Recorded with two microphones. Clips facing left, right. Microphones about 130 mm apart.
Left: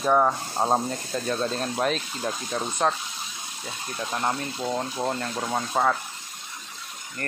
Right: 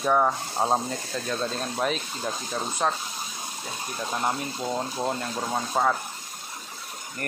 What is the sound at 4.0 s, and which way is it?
Speech, 5° right (ahead or behind).